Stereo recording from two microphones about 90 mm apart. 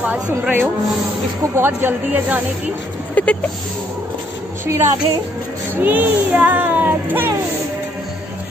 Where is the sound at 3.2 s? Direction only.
15° left (ahead or behind).